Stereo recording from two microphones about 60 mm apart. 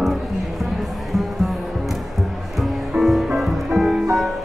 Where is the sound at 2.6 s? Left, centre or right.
Centre.